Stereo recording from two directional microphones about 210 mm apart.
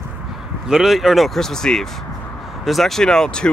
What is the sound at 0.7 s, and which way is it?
Speech, centre (ahead or behind).